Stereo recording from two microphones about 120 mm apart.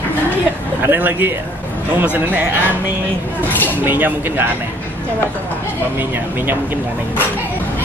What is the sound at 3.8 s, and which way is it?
Speech, 15° right (ahead or behind).